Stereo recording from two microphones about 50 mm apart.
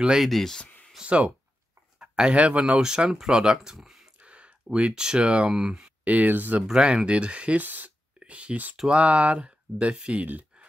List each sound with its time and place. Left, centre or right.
0.2 s speech: centre
1.0 s speech: centre
3.5 s speech: centre
4.2 s a sound: right
5.0 s speech: right
6.0 s speech: right
6.7 s speech: centre
7.6 s speech: right
8.2 s speech: right